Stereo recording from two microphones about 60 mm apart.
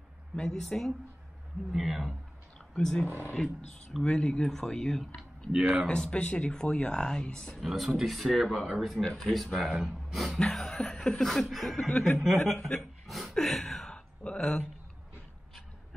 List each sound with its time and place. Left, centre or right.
0.4 s speech: centre
2.7 s speech: centre
5.5 s speech: centre
5.9 s speech: centre
7.6 s speech: centre
13.0 s a sound: centre
13.9 s a sound: centre